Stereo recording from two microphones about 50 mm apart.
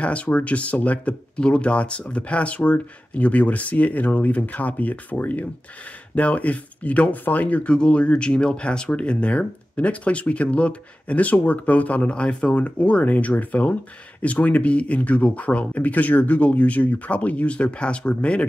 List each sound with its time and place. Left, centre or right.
0.0 s speech: left